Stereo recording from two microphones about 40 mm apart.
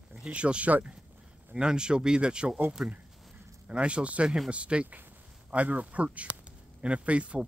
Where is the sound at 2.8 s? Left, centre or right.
Centre.